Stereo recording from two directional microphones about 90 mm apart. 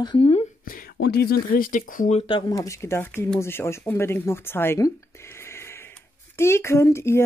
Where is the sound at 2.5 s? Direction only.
35° left (ahead or behind).